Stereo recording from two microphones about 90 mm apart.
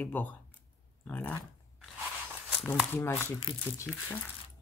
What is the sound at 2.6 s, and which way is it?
Speech, 25° left (ahead or behind).